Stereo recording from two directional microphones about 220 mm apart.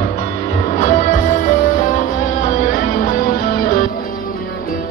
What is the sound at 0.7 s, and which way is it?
Music, 35° left (ahead or behind).